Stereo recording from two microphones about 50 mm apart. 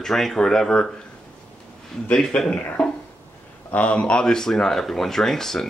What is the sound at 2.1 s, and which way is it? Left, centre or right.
Speech, centre.